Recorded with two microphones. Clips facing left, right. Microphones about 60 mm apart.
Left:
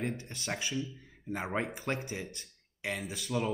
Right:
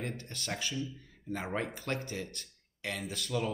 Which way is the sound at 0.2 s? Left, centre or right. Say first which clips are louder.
Left 1 dB; centre.